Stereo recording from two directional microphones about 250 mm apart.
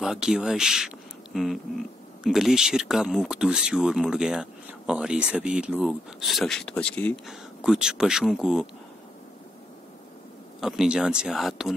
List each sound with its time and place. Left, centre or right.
0.0 s speech: centre
10.6 s speech: centre